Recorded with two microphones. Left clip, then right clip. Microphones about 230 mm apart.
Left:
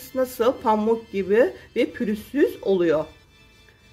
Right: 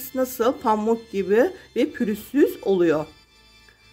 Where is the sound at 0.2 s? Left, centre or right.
Centre.